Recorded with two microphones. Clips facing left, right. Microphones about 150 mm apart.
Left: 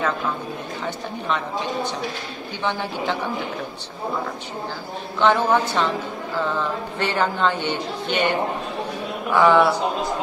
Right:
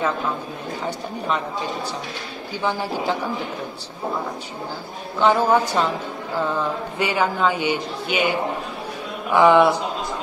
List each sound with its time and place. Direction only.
2.6 s a man's voice: 5° right (ahead or behind)
5.2 s a man's voice: 10° right (ahead or behind)
7.0 s a man's voice: 10° right (ahead or behind)